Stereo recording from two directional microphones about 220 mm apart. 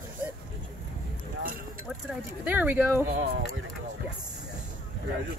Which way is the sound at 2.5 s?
10° right (ahead or behind).